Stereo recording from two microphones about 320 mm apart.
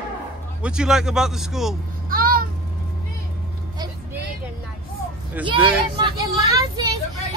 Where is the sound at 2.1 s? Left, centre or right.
Right.